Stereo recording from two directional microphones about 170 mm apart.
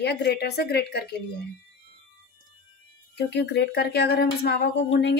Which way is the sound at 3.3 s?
80° left.